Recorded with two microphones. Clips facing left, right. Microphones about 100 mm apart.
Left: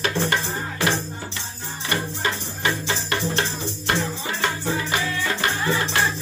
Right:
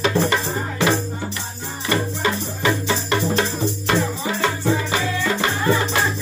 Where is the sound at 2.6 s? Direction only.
30° right (ahead or behind).